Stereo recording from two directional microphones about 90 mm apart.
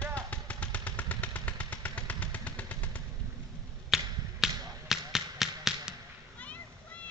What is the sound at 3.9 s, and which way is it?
Finger snapping, 5° right (ahead or behind).